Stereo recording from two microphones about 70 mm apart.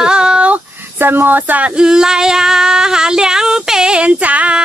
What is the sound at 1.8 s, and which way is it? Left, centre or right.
Female singing, centre.